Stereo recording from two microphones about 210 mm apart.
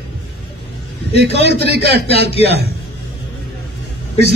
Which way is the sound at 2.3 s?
30° left (ahead or behind).